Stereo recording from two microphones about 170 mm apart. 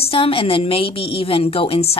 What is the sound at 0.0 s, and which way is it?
A woman's voice, 35° left (ahead or behind).